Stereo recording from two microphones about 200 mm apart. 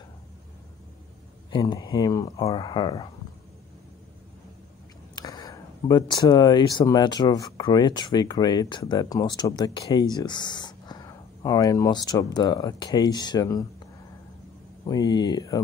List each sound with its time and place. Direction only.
1.5 s speech: 20° left (ahead or behind)
5.1 s speech: 20° left (ahead or behind)
14.9 s speech: 20° left (ahead or behind)